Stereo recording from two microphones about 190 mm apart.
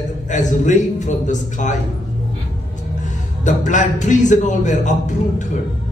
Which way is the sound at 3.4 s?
40° left (ahead or behind).